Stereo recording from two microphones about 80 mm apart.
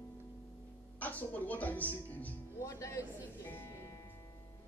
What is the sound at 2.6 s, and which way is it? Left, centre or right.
Speech, left.